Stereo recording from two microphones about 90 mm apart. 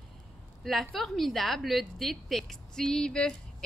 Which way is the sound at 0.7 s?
5° left (ahead or behind).